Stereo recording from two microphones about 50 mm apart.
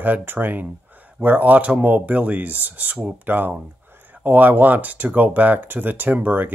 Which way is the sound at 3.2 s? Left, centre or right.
Right.